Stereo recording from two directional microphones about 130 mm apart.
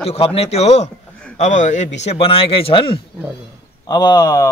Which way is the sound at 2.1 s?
45° left (ahead or behind).